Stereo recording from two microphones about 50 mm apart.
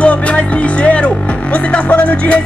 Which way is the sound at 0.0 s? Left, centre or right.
Left.